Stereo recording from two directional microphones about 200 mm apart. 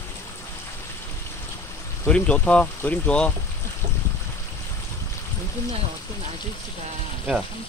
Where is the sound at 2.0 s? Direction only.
5° left (ahead or behind).